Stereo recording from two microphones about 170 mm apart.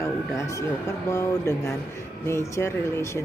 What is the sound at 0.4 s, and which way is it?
Speech, 15° left (ahead or behind).